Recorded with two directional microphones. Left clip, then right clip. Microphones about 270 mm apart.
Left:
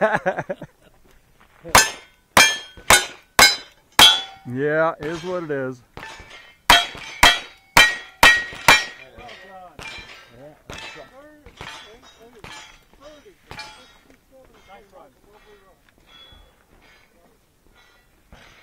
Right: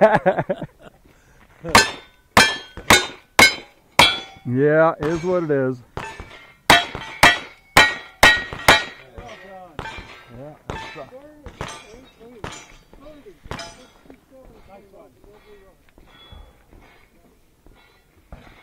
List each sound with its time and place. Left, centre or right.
0.0 s speech: centre
1.7 s glass: centre
3.3 s chink: centre
4.5 s speech: centre
6.7 s hammer: centre